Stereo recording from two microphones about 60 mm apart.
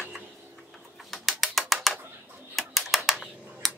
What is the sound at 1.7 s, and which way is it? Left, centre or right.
Typewriter, centre.